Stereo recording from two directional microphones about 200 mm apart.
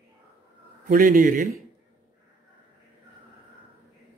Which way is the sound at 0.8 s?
45° right (ahead or behind).